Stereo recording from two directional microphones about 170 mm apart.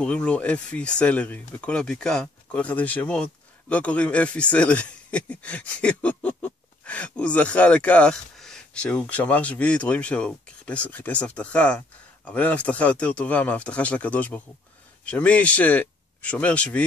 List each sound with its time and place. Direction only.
0.0 s speech: 5° left (ahead or behind)